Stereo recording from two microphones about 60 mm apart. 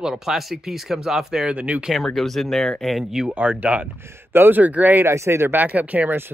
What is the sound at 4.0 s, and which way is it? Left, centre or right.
A man's voice, right.